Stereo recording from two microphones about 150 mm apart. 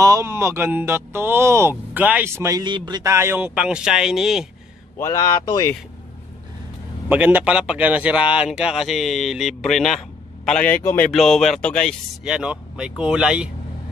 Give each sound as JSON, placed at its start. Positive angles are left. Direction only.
{"t": 0.0, "sound": "speech", "side_deg": -20}
{"t": 2.6, "sound": "speech", "side_deg": -30}
{"t": 4.9, "sound": "speech", "side_deg": 15}
{"t": 7.1, "sound": "speech", "side_deg": -10}
{"t": 10.8, "sound": "speech", "side_deg": 20}
{"t": 11.1, "sound": "speech", "side_deg": 0}
{"t": 12.3, "sound": "speech", "side_deg": -5}